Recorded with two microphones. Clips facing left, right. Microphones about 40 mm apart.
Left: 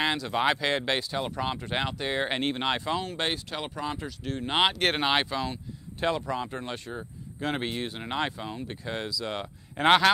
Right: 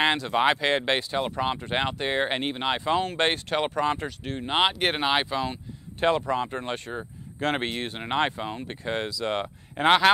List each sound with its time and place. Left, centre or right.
0.0 s speech: right
0.3 s speech: centre
0.7 s speech: right
2.2 s speech: centre
2.8 s speech: right
4.5 s speech: centre
5.3 s speech: right
10.1 s speech: centre